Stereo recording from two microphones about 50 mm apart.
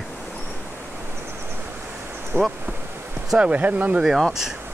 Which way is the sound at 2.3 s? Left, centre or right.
Right.